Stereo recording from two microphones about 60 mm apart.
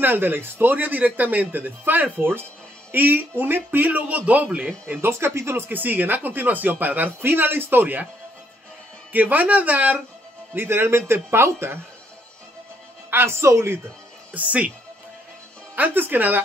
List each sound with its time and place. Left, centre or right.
0.0 s a man's voice: right
4.6 s a man's voice: right
5.1 s speech: right
5.7 s a man's voice: right
9.1 s speech: right
10.5 s speech: right
13.1 s speech: right
14.3 s speech: right
15.7 s a man's voice: right